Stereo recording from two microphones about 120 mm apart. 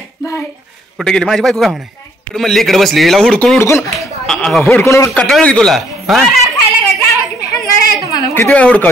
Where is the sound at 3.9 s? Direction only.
5° left (ahead or behind).